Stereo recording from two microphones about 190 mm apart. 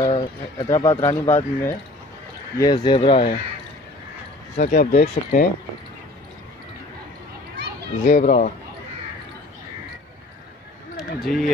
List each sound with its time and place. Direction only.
0.0 s speech: 25° left (ahead or behind)
2.6 s speech: 20° left (ahead or behind)
4.6 s speech: 45° left (ahead or behind)
7.5 s children playing: 60° right (ahead or behind)
8.0 s speech: 40° left (ahead or behind)
11.0 s speech: centre (ahead or behind)